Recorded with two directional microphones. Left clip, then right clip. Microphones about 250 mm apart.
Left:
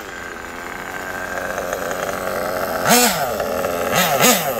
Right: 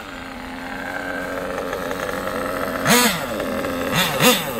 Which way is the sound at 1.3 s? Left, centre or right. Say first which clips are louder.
Left 2 dB; centre.